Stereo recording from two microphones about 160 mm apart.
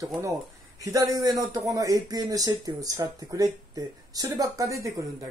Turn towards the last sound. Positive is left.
turn(degrees=-20)  # may be behind; listen again after turning